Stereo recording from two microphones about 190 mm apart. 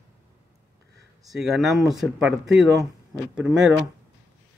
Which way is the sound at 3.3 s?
5° right (ahead or behind).